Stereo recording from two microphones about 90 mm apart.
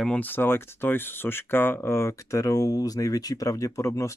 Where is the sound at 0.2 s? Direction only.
25° left (ahead or behind).